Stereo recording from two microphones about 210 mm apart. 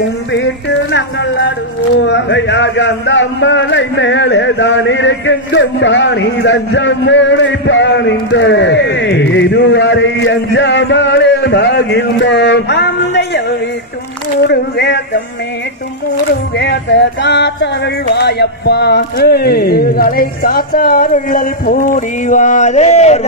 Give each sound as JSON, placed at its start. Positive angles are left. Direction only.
{"t": 0.9, "sound": "a man's voice", "side_deg": 55}
{"t": 14.5, "sound": "a man's voice", "side_deg": 55}
{"t": 16.5, "sound": "a man's voice", "side_deg": 55}